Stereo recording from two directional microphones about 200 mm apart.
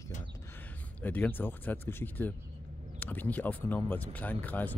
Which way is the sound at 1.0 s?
10° left (ahead or behind).